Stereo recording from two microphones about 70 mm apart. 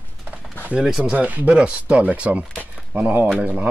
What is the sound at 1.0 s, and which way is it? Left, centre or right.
Speech, centre.